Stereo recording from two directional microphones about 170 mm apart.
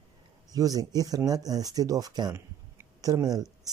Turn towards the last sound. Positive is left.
turn(degrees=-20)  # may be behind; listen again after turning